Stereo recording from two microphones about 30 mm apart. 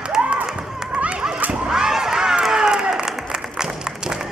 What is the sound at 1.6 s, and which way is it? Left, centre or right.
Crowd, centre.